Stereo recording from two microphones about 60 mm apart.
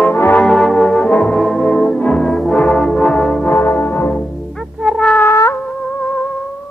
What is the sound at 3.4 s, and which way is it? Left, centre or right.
Music, left.